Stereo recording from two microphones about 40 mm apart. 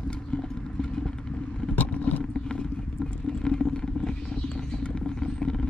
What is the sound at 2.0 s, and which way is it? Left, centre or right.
Vehicle, left.